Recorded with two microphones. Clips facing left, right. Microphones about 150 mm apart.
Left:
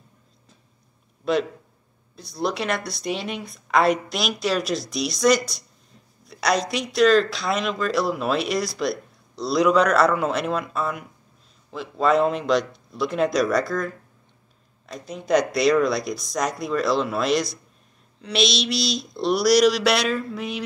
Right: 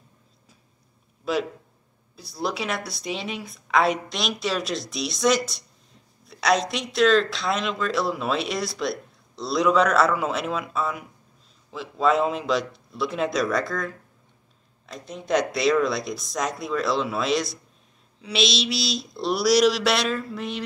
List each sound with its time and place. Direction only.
1.3 s speech: 5° right (ahead or behind)